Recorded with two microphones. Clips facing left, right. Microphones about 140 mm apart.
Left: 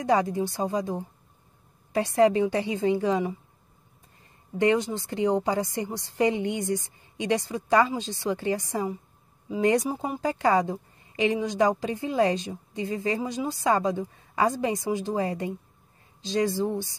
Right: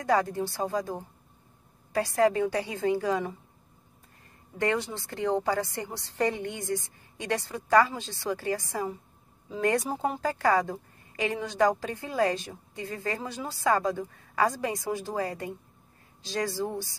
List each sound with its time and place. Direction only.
0.0 s a woman's voice: 20° left (ahead or behind)
4.6 s a woman's voice: 20° left (ahead or behind)